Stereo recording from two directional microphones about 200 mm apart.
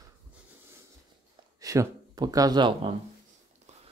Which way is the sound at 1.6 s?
15° right (ahead or behind).